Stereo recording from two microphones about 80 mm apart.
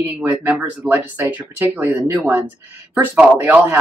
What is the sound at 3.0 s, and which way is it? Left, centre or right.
Speech, centre.